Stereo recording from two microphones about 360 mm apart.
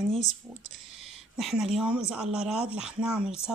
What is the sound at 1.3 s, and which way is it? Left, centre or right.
Speech, centre.